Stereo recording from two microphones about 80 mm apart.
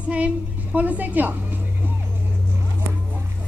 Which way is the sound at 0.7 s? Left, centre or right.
Right.